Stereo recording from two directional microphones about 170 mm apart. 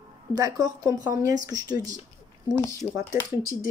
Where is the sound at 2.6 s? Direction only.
15° left (ahead or behind).